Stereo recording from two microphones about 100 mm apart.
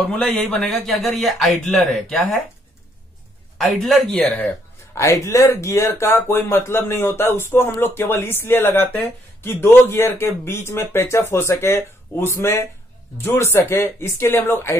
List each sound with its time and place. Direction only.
0.1 s speech: 10° left (ahead or behind)
3.5 s speech: 5° left (ahead or behind)
4.9 s speech: 30° left (ahead or behind)